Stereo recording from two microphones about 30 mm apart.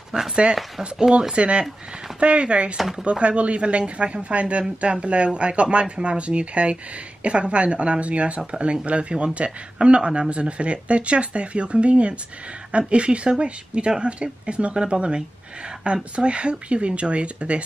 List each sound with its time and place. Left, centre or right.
0.1 s speech: right
1.3 s speech: right